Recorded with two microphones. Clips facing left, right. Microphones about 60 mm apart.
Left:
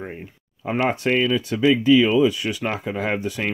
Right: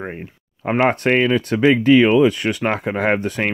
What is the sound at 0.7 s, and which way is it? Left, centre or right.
Speech, right.